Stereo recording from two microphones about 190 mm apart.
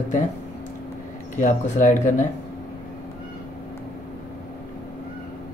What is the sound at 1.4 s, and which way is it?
Speech, 40° left (ahead or behind).